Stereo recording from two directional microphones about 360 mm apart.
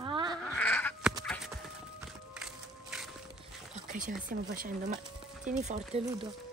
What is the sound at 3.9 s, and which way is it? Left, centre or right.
Speech, right.